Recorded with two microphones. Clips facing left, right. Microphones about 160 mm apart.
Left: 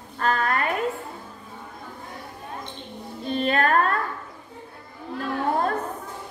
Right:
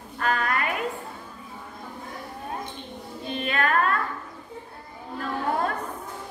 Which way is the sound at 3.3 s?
40° left (ahead or behind).